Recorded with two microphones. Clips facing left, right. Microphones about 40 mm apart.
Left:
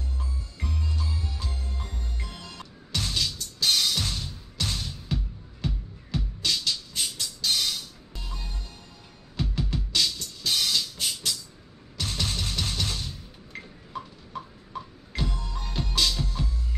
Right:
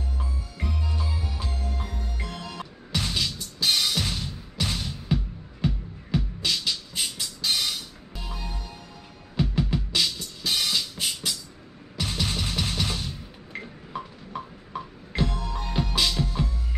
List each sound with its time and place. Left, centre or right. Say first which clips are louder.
0.2 s music: right 3 dB; centre